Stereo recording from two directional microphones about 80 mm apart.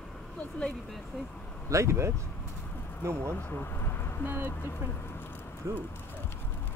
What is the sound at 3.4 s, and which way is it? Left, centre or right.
Vehicle, left.